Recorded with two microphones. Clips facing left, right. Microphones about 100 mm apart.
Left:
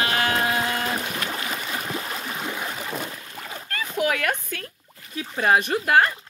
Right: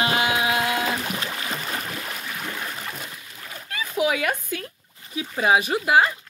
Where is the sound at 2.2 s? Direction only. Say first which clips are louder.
Left 2 dB; 25° left (ahead or behind).